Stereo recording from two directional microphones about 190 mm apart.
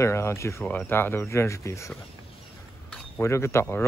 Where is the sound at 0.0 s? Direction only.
15° left (ahead or behind).